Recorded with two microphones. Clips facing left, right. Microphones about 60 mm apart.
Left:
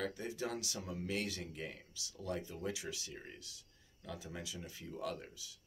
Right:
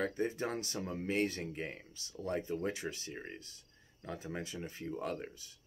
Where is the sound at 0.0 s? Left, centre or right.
Right.